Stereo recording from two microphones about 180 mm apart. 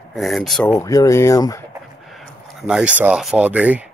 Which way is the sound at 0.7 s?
20° left (ahead or behind).